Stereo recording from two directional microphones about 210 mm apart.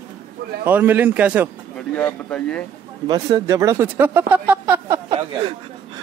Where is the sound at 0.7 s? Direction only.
10° right (ahead or behind).